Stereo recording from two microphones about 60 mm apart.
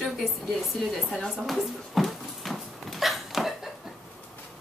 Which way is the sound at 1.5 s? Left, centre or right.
Centre.